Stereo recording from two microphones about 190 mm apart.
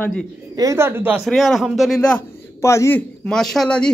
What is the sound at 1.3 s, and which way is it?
Speech, centre (ahead or behind).